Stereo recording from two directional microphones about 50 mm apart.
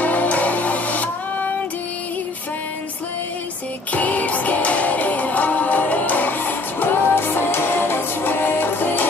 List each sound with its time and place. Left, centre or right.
0.0 s music: left
3.9 s music: left